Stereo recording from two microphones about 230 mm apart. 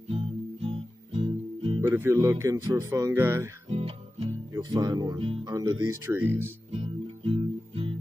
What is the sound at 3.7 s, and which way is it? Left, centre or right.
Music, right.